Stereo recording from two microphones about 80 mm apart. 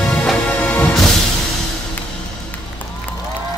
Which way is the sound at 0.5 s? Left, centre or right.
Left.